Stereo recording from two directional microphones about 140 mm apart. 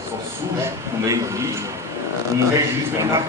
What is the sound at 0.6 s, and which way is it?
Speech, 20° right (ahead or behind).